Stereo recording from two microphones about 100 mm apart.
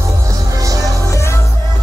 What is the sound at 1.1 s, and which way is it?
Music, 30° left (ahead or behind).